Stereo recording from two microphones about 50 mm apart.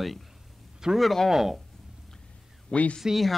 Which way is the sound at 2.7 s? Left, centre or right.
Left.